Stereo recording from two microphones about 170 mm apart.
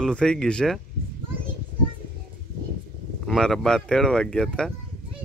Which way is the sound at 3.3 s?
5° left (ahead or behind).